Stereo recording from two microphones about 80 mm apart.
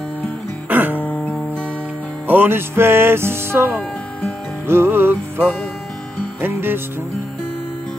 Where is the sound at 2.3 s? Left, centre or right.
Right.